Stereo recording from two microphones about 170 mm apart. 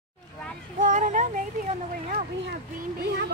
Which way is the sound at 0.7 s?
50° right (ahead or behind).